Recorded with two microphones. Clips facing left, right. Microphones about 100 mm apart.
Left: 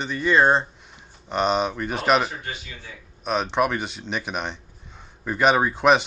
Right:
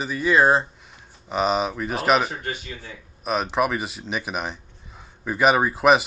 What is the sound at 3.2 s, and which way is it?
Speech, 5° right (ahead or behind).